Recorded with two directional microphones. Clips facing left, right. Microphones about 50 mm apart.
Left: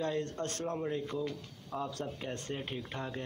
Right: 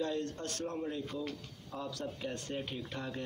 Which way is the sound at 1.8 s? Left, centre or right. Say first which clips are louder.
Left 1 dB; left.